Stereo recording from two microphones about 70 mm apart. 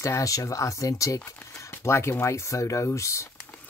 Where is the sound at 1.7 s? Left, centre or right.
Left.